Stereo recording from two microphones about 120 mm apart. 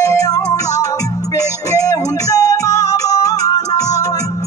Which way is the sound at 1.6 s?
30° left (ahead or behind).